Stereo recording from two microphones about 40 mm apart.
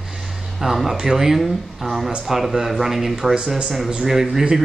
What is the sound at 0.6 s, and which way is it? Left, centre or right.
Speech, centre.